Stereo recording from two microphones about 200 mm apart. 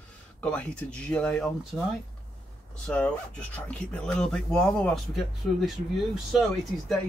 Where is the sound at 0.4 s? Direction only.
5° left (ahead or behind).